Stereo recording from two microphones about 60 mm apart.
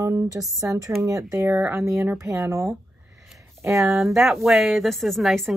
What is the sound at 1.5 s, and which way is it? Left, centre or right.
Speech, right.